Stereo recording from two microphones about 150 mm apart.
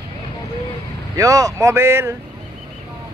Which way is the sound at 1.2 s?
25° right (ahead or behind).